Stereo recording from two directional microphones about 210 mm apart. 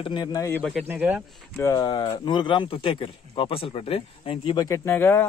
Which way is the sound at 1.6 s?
15° left (ahead or behind).